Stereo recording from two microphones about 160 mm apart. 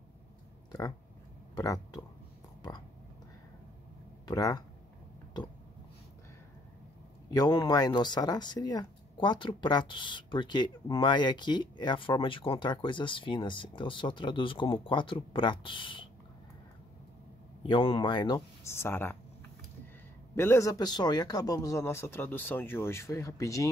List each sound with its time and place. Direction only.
0.7 s speech: 25° left (ahead or behind)
4.3 s speech: 25° left (ahead or behind)
7.2 s speech: 25° left (ahead or behind)
17.6 s speech: 30° left (ahead or behind); by 19.1 s 15° left (ahead or behind)
20.3 s a man's voice: 15° left (ahead or behind)